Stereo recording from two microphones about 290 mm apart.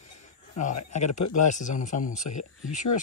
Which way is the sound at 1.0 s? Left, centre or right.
Left.